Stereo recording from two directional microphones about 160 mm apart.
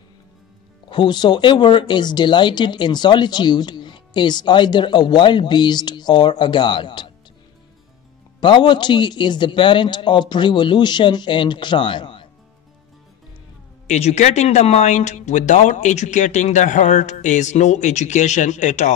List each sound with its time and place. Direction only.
0.8 s speech: 30° left (ahead or behind)
8.4 s speech: 30° left (ahead or behind)
13.8 s speech: 45° left (ahead or behind)